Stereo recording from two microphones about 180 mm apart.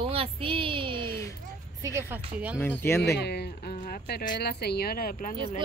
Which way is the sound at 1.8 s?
15° right (ahead or behind).